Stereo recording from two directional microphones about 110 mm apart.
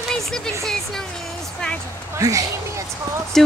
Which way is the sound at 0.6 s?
5° left (ahead or behind).